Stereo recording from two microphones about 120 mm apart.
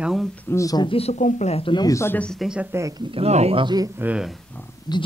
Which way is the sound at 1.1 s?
75° left (ahead or behind).